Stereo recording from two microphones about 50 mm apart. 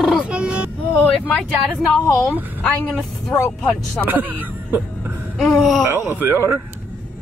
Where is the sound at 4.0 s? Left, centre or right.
Right.